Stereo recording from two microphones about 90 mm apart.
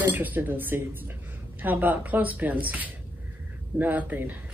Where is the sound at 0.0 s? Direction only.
20° right (ahead or behind).